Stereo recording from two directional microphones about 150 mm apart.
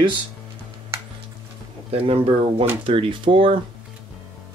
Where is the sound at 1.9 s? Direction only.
40° right (ahead or behind).